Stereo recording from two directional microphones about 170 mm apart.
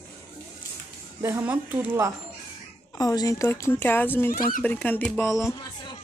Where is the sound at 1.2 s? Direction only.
10° right (ahead or behind).